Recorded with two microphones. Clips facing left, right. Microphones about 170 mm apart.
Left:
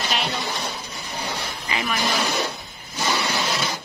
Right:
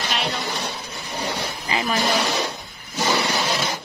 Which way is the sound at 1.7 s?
35° right (ahead or behind).